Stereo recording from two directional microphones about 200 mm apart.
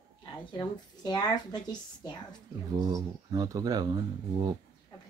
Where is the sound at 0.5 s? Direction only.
20° left (ahead or behind).